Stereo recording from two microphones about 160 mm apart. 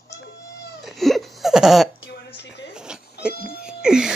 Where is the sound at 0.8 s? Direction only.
Centre (ahead or behind).